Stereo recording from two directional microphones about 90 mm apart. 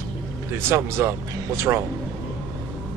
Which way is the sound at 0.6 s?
25° right (ahead or behind).